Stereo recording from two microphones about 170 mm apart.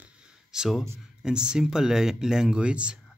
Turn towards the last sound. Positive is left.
turn(degrees=-5)  # may be behind; listen again after turning